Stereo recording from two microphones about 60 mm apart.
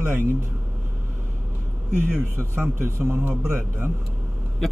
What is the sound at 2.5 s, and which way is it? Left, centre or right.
Speech, right.